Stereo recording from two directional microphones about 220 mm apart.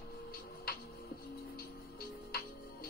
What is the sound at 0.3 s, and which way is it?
Music, 40° left (ahead or behind).